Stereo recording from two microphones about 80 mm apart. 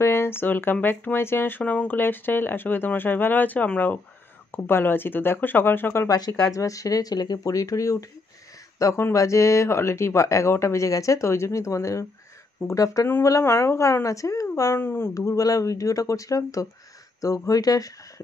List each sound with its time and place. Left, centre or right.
0.0 s speech: left
1.6 s speech: centre
6.0 s speech: left
6.5 s speech: left
14.5 s speech: left
15.1 s speech: left